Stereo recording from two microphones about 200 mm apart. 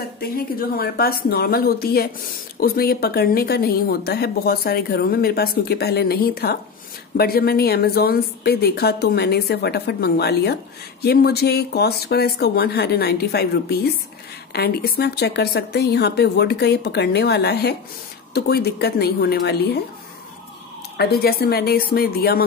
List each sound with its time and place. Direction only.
0.2 s a woman's voice: 50° left (ahead or behind)
21.0 s speech: 50° left (ahead or behind)